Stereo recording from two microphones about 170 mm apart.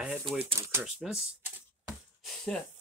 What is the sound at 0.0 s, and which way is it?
Typewriter, 5° right (ahead or behind).